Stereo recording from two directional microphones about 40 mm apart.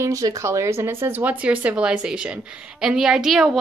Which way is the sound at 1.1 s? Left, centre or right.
Right.